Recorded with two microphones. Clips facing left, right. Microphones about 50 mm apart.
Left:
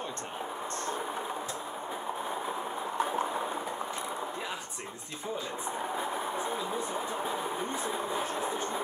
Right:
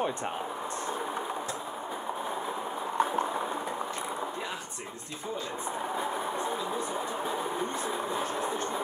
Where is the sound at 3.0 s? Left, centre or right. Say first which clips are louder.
Right 3 dB; centre.